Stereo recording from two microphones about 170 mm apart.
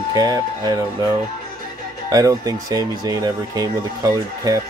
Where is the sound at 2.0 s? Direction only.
20° right (ahead or behind).